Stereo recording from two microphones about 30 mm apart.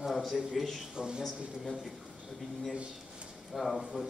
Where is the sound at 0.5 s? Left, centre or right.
Centre.